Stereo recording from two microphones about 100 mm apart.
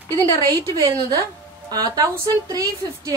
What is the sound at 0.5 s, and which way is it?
A woman's voice, 35° right (ahead or behind).